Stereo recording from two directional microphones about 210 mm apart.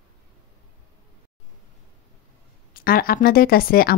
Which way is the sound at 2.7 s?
45° left (ahead or behind).